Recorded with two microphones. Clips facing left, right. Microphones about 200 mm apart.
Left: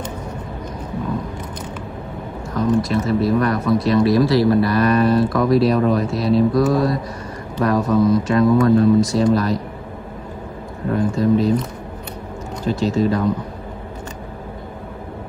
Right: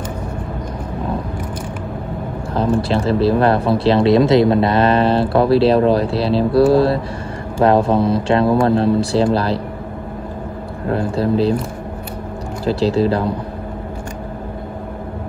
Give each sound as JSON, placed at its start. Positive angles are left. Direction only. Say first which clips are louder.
{"t": 2.5, "sound": "speech", "louder": "right 1 dB", "side_deg": -30}
{"t": 11.1, "sound": "speech", "louder": "right 1 dB", "side_deg": -30}
{"t": 12.6, "sound": "speech", "louder": "right 3 dB", "side_deg": -35}